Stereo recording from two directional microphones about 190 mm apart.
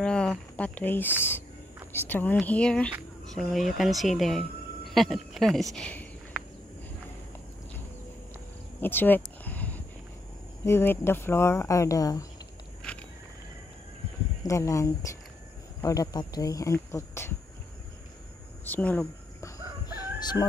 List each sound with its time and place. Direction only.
0.0 s speech: 5° left (ahead or behind)
8.8 s a sound: 10° left (ahead or behind)
10.6 s speech: 10° left (ahead or behind)
12.9 s a sound: 5° left (ahead or behind)
14.4 s speech: 15° left (ahead or behind)
18.7 s speech: 10° left (ahead or behind)
20.2 s chicken: 20° left (ahead or behind)